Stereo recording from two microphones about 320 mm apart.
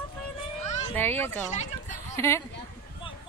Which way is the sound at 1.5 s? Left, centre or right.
Left.